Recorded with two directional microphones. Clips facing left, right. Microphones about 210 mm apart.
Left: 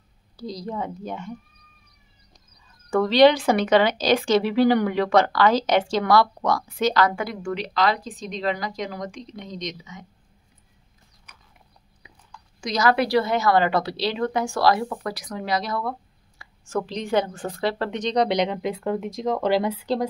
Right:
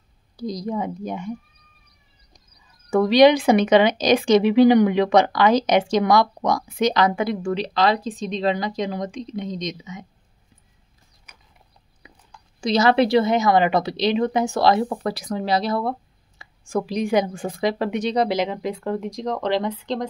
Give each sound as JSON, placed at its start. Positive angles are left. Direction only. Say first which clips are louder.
{"t": 0.4, "sound": "a woman's voice", "louder": "right 4 dB", "side_deg": -15}
{"t": 2.9, "sound": "a woman's voice", "louder": "right 2 dB", "side_deg": -15}
{"t": 12.3, "sound": "a woman's voice", "louder": "right 7 dB", "side_deg": -30}
{"t": 16.6, "sound": "speech", "louder": "right 4 dB", "side_deg": -10}